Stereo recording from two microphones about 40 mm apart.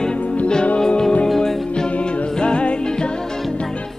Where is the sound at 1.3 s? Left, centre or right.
Centre.